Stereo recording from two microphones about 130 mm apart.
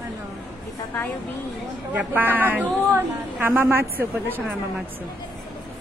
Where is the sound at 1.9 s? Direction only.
15° right (ahead or behind).